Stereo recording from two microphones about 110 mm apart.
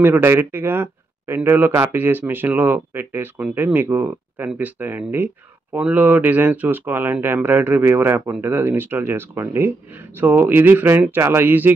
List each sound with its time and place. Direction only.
0.0 s a man's voice: 20° right (ahead or behind)